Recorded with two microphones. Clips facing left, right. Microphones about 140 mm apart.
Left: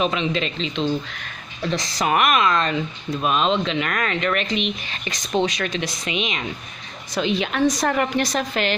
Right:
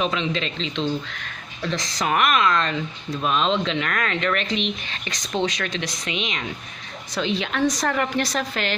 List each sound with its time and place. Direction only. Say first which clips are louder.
0.0 s speech: left 2 dB; 10° left (ahead or behind)